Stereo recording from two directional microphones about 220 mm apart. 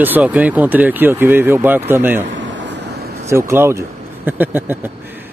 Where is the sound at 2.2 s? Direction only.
55° right (ahead or behind).